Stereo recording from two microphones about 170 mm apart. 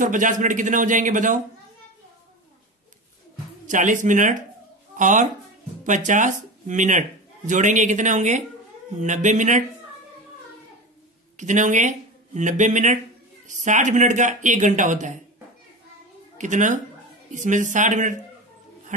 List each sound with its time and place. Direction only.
0.0 s speech: 50° right (ahead or behind)
3.6 s speech: 50° right (ahead or behind)
11.3 s speech: 45° right (ahead or behind)
16.3 s speech: 45° right (ahead or behind)